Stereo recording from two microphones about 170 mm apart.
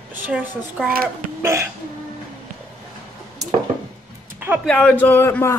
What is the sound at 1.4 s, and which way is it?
Hiccup, 15° right (ahead or behind).